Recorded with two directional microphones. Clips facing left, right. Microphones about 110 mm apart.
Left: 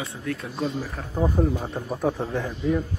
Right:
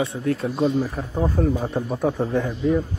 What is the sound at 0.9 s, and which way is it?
Speech, 10° right (ahead or behind).